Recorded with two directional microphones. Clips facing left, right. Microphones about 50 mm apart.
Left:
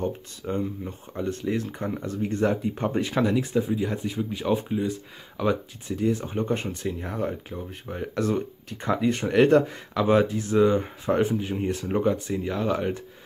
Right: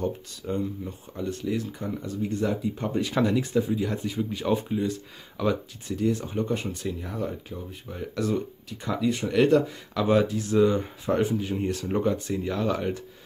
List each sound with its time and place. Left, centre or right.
0.0 s speech: left
3.2 s speech: centre